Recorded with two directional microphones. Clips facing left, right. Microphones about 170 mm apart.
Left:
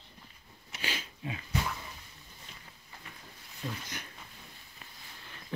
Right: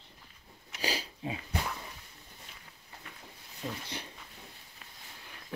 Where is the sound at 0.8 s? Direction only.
35° right (ahead or behind).